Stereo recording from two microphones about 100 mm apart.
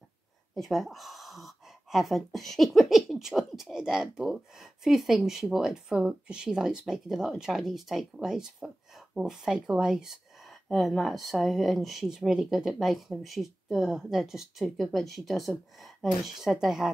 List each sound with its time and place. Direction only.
0.6 s speech: centre (ahead or behind)